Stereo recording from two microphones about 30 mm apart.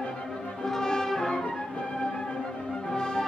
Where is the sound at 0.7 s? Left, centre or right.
Centre.